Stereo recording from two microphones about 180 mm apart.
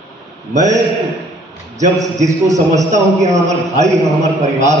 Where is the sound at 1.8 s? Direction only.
40° right (ahead or behind).